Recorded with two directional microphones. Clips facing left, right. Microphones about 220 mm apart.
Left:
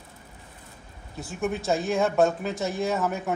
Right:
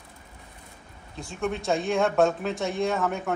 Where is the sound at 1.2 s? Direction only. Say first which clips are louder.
Left 1 dB; 5° left (ahead or behind).